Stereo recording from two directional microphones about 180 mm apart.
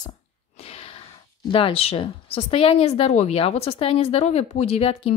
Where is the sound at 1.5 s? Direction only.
30° left (ahead or behind).